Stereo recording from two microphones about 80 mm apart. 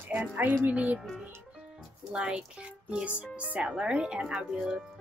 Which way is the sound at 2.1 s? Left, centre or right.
Centre.